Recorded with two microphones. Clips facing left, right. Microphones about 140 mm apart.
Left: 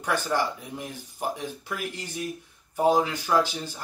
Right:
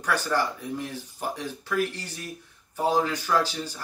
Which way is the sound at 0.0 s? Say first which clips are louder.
Even; 15° left (ahead or behind).